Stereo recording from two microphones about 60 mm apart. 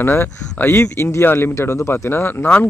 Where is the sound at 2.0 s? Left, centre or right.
Left.